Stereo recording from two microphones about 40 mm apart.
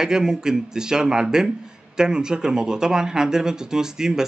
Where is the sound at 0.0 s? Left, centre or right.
Centre.